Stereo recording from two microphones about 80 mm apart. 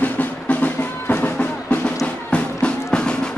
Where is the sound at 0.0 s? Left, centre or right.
Left.